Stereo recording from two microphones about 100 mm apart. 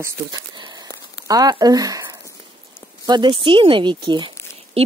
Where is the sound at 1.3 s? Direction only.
40° right (ahead or behind); by 4.3 s 55° right (ahead or behind).